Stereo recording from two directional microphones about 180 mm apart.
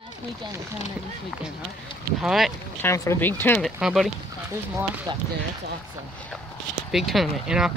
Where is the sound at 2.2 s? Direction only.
Centre (ahead or behind).